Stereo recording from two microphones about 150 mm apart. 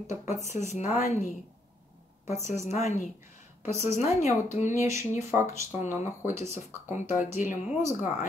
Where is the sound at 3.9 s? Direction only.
50° left (ahead or behind).